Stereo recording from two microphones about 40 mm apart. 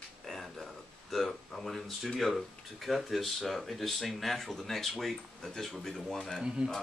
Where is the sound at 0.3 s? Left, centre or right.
Centre.